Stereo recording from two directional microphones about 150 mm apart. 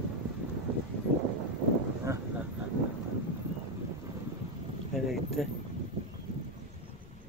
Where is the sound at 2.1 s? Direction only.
20° right (ahead or behind).